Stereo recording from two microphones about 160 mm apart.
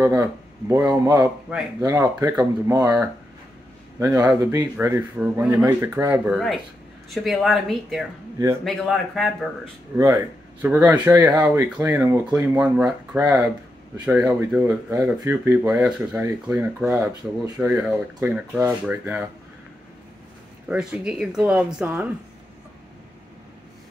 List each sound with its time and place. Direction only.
0.0 s speech: 20° right (ahead or behind)
4.0 s speech: 10° right (ahead or behind)
9.9 s speech: 15° right (ahead or behind)
20.6 s speech: 5° right (ahead or behind)